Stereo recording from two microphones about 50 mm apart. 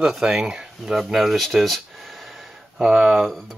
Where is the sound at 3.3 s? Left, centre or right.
Centre.